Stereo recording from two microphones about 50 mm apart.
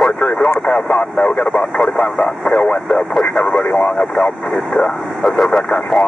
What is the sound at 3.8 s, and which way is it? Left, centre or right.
Speech, left.